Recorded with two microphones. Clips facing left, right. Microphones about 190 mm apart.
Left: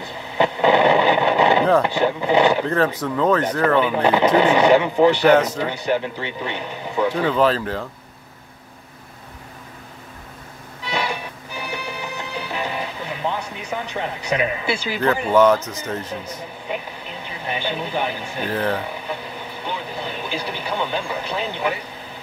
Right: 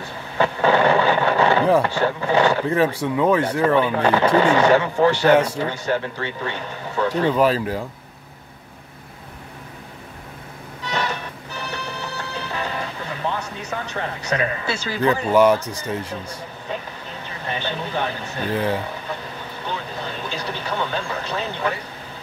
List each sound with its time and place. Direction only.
0.4 s a sound: 15° left (ahead or behind)
1.8 s speech: 15° left (ahead or behind)
2.7 s speech: 10° right (ahead or behind)
3.8 s speech: 15° left (ahead or behind)
5.3 s speech: 10° right (ahead or behind)
5.6 s speech: 15° left (ahead or behind)
7.2 s speech: 10° right (ahead or behind)
10.8 s music: 10° left (ahead or behind)
15.3 s speech: 10° right (ahead or behind)
16.6 s speech: 10° left (ahead or behind)
18.5 s speech: 10° right (ahead or behind)
19.6 s speech: 10° left (ahead or behind)